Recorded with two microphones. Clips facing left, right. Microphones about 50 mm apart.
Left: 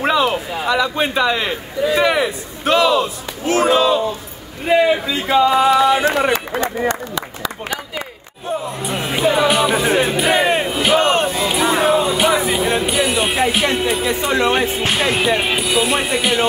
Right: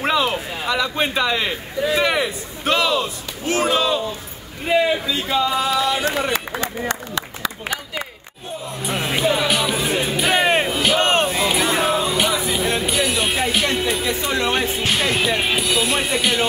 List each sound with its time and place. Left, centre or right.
0.0 s a man's voice: centre
4.6 s speech: centre; by 6.9 s left
8.8 s music: centre
9.2 s speech: left
9.7 s music: left
10.7 s crowd: centre
11.3 s a sound: centre
11.9 s music: left
12.3 s a sound: left
12.5 s music: centre
13.4 s speech: centre